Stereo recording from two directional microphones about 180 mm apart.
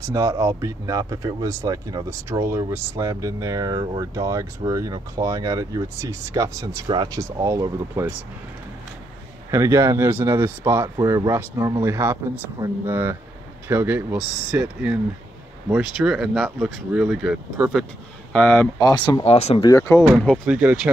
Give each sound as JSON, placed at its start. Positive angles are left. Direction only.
{"t": 0.0, "sound": "speech", "side_deg": -20}
{"t": 9.5, "sound": "speech", "side_deg": -15}
{"t": 18.3, "sound": "speech", "side_deg": 10}
{"t": 18.8, "sound": "speech", "side_deg": 20}
{"t": 19.2, "sound": "speech", "side_deg": 35}
{"t": 19.6, "sound": "speech", "side_deg": 15}
{"t": 20.4, "sound": "speech", "side_deg": -5}